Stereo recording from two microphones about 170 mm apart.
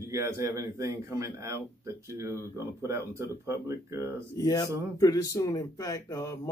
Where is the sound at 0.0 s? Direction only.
15° right (ahead or behind).